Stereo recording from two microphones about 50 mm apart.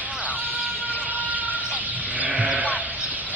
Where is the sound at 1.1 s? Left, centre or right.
Right.